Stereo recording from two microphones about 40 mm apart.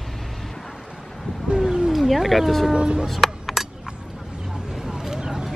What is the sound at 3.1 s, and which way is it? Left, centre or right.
Music, centre.